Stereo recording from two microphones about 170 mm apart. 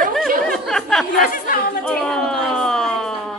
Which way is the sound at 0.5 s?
5° left (ahead or behind).